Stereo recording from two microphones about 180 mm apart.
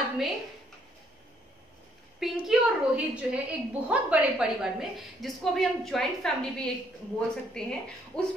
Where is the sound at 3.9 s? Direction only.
5° right (ahead or behind).